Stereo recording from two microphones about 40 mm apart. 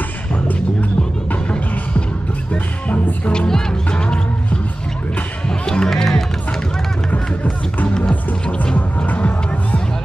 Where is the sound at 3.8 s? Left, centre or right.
Left.